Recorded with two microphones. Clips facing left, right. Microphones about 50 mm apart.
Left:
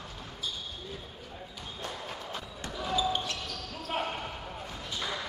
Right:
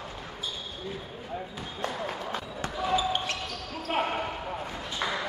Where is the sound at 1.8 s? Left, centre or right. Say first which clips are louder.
Right 7 dB; right.